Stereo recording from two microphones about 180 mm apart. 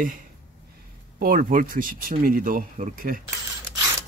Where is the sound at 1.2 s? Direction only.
50° right (ahead or behind).